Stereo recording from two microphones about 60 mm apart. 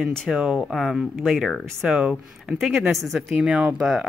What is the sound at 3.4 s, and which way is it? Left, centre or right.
Speech, centre.